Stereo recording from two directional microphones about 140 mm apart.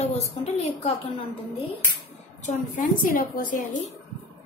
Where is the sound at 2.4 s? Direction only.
65° left (ahead or behind).